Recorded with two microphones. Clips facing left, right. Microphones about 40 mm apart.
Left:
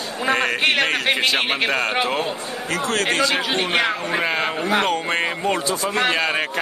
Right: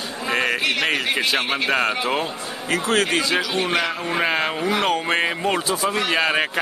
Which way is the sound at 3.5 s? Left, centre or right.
Left.